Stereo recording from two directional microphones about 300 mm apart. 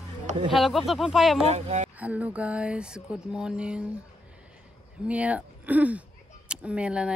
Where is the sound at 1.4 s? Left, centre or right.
Right.